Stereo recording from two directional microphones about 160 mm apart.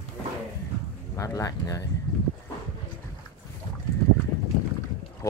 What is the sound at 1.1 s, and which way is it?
Speech, 20° left (ahead or behind).